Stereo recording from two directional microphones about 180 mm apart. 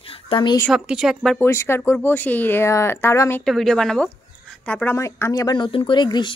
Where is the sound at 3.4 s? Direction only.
Centre (ahead or behind); by 6.3 s 25° left (ahead or behind).